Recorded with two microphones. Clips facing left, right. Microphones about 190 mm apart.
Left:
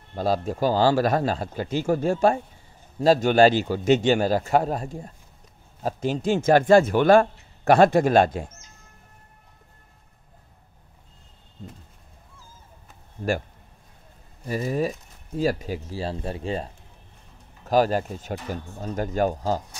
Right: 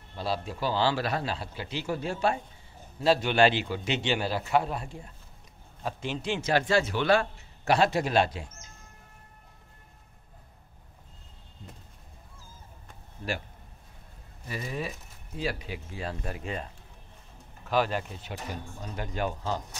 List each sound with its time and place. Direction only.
0.1 s a man's voice: 45° left (ahead or behind)
14.5 s speech: 40° left (ahead or behind)